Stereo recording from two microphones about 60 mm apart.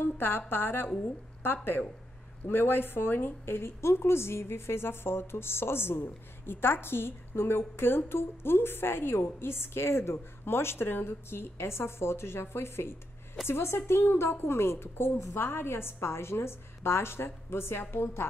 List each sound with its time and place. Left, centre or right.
0.0 s a woman's voice: left